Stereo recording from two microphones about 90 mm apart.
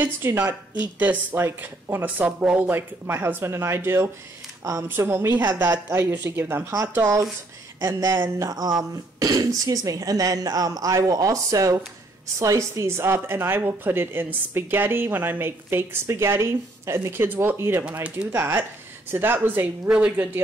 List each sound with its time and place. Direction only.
0.0 s speech: 25° right (ahead or behind); by 2.7 s 10° right (ahead or behind)
2.7 s speech: 25° right (ahead or behind)
17.8 s speech: 15° right (ahead or behind)
18.3 s speech: 25° right (ahead or behind)